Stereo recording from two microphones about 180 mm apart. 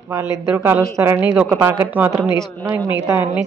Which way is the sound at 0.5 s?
10° right (ahead or behind).